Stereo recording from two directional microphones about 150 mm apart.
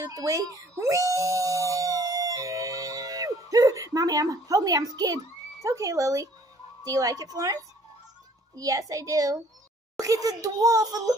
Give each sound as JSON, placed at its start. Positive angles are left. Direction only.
{"t": 0.1, "sound": "a child's voice", "side_deg": -20}